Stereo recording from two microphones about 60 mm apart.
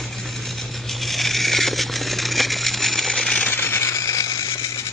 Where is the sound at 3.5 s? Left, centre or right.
Left.